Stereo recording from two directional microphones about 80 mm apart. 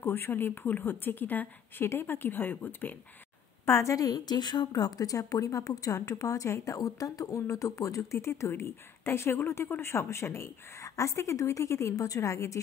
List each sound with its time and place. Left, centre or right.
0.0 s speech: left
3.6 s a woman's voice: left